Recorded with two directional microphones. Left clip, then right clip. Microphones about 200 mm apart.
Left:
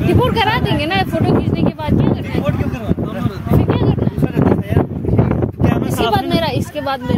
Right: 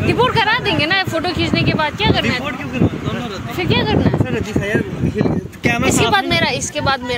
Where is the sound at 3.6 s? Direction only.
10° left (ahead or behind).